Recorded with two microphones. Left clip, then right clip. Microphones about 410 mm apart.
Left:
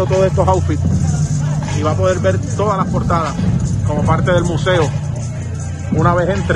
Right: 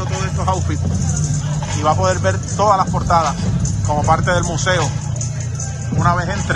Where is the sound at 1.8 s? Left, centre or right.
Centre.